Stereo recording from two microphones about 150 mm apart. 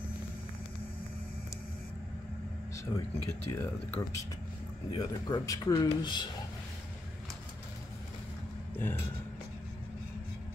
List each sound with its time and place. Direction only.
2.7 s speech: 20° left (ahead or behind)
4.9 s speech: 25° left (ahead or behind)
8.7 s a sound: 15° left (ahead or behind)